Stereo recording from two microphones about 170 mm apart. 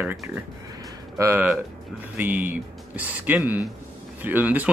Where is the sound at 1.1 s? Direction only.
15° right (ahead or behind).